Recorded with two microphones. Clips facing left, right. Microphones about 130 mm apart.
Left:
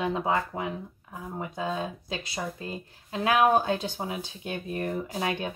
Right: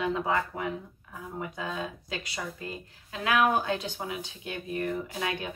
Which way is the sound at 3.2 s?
30° left (ahead or behind).